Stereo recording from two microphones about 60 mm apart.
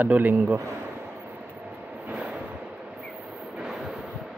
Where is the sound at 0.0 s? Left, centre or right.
Right.